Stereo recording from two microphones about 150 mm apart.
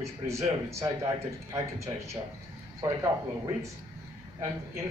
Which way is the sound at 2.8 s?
25° right (ahead or behind).